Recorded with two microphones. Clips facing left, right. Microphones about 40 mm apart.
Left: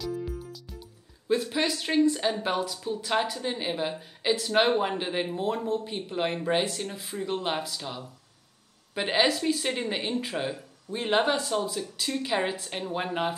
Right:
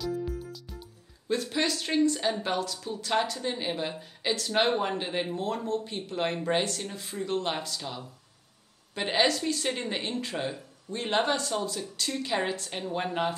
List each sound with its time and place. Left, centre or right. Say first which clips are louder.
0.0 s music: right 1 dB; centre
1.3 s a woman's voice: left 2 dB; centre